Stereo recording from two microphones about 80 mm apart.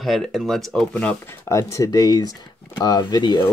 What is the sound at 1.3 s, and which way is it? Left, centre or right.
Speech, left.